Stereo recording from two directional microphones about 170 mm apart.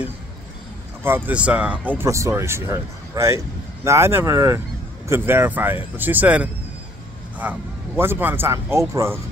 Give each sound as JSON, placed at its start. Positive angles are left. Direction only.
{"t": 1.0, "sound": "speech", "side_deg": -10}